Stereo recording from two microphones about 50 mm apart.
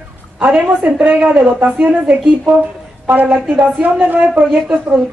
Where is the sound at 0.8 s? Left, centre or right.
Right.